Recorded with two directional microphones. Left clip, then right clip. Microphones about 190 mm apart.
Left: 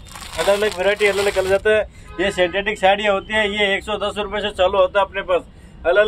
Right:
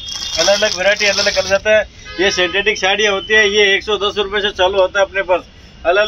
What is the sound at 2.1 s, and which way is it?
Speech, 30° left (ahead or behind).